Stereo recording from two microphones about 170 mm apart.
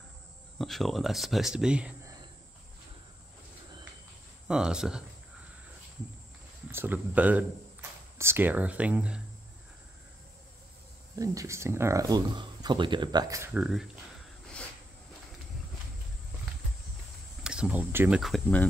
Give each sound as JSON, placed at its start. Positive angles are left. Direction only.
{"t": 0.6, "sound": "speech", "side_deg": 0}
{"t": 4.5, "sound": "speech", "side_deg": -5}
{"t": 6.7, "sound": "speech", "side_deg": -10}
{"t": 11.1, "sound": "speech", "side_deg": -20}
{"t": 13.6, "sound": "speech", "side_deg": -5}
{"t": 17.4, "sound": "speech", "side_deg": -5}
{"t": 18.2, "sound": "speech", "side_deg": 5}